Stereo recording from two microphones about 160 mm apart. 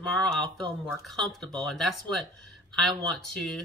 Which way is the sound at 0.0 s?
Centre (ahead or behind).